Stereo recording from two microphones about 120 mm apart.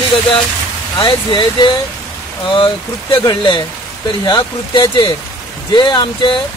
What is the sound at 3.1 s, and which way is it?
Speech, 40° left (ahead or behind).